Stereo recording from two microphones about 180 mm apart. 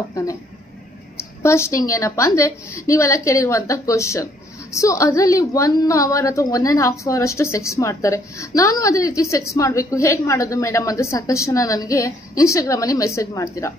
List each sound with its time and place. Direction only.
1.4 s a woman's voice: 15° left (ahead or behind)